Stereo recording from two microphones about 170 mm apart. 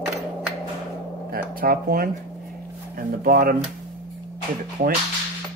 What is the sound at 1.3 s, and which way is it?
Speech, 60° right (ahead or behind).